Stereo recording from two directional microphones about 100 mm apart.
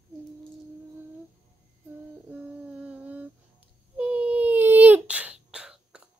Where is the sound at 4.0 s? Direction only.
10° right (ahead or behind).